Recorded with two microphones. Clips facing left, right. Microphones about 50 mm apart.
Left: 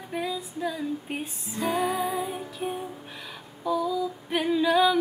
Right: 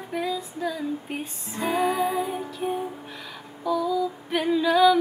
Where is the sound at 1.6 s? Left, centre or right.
Centre.